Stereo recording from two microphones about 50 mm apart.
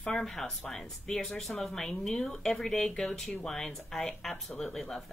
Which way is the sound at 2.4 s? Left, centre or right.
Centre.